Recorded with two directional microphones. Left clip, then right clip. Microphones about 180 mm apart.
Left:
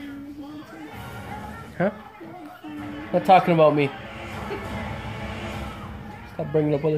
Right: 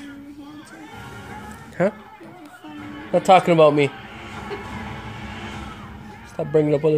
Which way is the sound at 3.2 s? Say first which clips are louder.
Right 2 dB; 40° right (ahead or behind).